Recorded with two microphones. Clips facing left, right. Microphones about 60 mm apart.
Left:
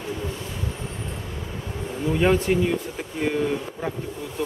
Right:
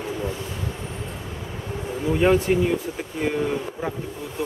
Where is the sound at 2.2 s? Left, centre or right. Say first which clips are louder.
Right 2 dB; centre.